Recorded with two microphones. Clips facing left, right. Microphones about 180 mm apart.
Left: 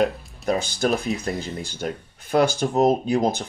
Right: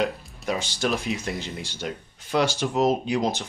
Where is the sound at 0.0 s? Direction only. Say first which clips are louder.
Left 4 dB; 50° left (ahead or behind).